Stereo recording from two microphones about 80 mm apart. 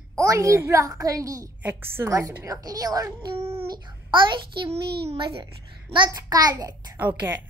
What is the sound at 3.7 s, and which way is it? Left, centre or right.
A child's voice, right.